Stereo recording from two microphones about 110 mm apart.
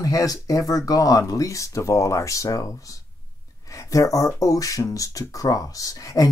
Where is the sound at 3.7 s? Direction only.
30° left (ahead or behind).